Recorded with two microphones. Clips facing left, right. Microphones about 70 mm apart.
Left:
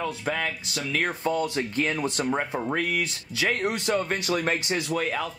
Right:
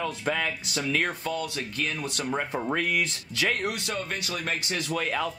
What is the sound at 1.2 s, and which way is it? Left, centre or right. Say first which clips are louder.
Speech: left 5 dB; left.